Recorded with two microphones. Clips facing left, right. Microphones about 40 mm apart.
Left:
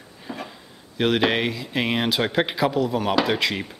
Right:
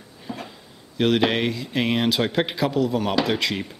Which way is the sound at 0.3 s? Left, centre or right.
Centre.